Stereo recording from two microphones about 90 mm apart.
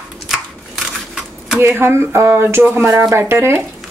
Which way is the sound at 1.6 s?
25° right (ahead or behind).